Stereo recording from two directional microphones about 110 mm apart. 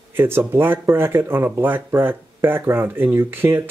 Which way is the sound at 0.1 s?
20° right (ahead or behind).